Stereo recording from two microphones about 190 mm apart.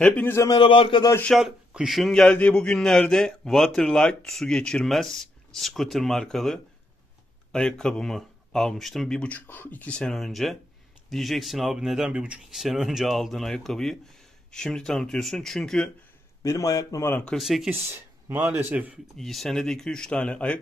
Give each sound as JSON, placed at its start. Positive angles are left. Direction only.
{"t": 0.0, "sound": "a man's voice", "side_deg": 10}
{"t": 1.1, "sound": "a man's voice", "side_deg": 5}
{"t": 16.4, "sound": "speech", "side_deg": 15}
{"t": 17.7, "sound": "a man's voice", "side_deg": -10}